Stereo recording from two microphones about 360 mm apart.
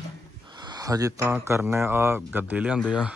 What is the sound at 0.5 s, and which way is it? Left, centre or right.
Speech, centre.